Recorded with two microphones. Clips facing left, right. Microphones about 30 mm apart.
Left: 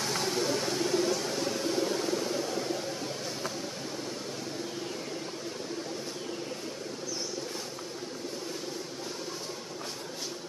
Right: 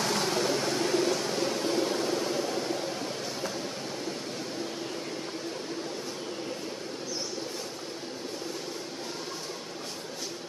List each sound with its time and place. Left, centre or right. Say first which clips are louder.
0.7 s vehicle: right 2 dB; right